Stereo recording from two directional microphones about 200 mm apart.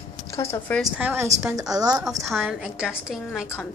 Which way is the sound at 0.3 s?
15° left (ahead or behind).